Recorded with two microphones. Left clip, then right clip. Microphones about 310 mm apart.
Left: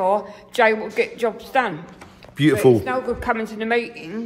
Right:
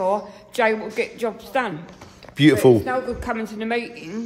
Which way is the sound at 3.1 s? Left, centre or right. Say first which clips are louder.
Left 4 dB; centre.